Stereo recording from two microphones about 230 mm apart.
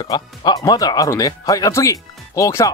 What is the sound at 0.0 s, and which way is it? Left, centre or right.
Speech, centre.